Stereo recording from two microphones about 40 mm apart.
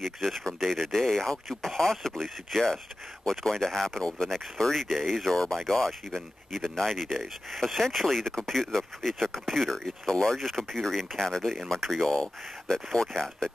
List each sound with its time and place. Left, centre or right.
0.0 s speech: centre
0.4 s speech: centre